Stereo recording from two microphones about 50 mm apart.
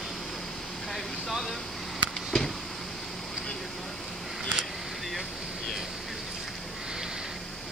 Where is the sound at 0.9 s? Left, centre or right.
Centre.